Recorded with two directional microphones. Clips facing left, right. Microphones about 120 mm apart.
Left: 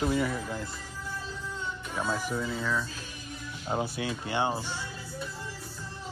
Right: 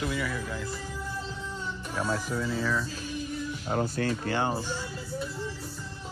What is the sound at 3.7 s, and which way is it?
Speech, 10° left (ahead or behind).